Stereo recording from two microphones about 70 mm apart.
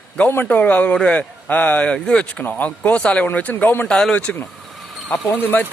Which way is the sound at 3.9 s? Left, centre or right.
Centre.